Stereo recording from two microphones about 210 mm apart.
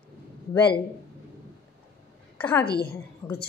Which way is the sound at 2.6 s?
50° left (ahead or behind).